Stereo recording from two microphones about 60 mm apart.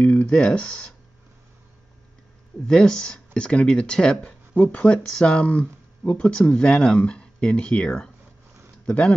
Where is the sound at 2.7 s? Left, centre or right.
Centre.